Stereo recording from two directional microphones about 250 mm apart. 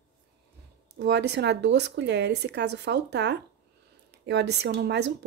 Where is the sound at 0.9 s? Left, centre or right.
Right.